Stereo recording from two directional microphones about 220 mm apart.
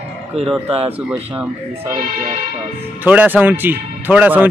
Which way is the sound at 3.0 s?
10° right (ahead or behind).